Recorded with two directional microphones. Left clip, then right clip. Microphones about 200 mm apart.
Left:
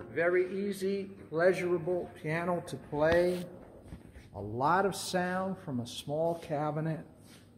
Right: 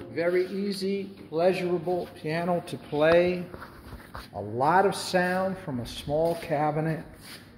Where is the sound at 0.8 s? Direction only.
25° left (ahead or behind).